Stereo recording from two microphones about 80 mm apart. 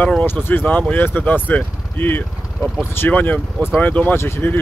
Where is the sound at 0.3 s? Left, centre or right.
Left.